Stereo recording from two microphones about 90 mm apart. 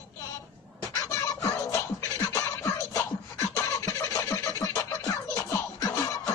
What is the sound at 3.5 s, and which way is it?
Scratching, 35° left (ahead or behind).